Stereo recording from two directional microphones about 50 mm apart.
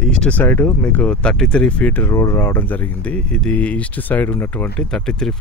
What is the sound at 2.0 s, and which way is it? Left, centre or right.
Speech, left.